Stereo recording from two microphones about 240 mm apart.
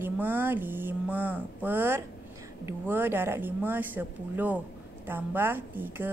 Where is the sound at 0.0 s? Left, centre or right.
Centre.